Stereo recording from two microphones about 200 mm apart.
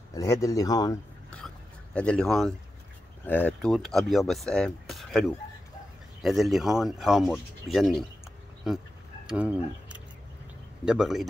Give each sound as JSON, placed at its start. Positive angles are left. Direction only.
{"t": 0.1, "sound": "a man's voice", "side_deg": 15}
{"t": 2.0, "sound": "speech", "side_deg": 5}
{"t": 9.3, "sound": "speech", "side_deg": -5}